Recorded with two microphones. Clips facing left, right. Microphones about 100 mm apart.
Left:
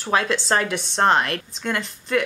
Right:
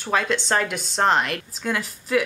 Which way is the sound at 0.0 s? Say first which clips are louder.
Left 1 dB; centre (ahead or behind).